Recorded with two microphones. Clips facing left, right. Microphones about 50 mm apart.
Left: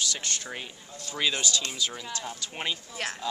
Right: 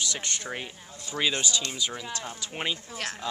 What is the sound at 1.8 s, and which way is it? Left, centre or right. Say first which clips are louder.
Speech: even; centre.